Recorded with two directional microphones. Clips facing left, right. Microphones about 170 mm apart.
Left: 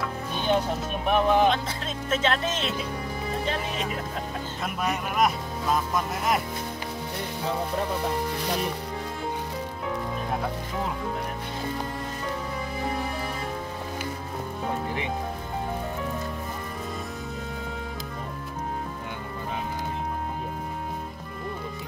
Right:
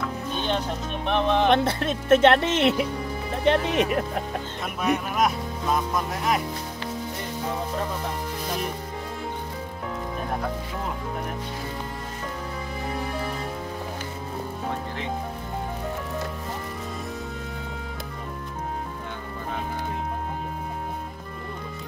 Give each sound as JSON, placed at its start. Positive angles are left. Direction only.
{"t": 0.0, "sound": "speech", "side_deg": 10}
{"t": 1.5, "sound": "speech", "side_deg": -65}
{"t": 4.8, "sound": "speech", "side_deg": 0}